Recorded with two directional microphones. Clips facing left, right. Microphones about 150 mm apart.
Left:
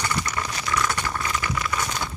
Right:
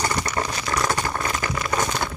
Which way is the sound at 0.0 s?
40° right (ahead or behind).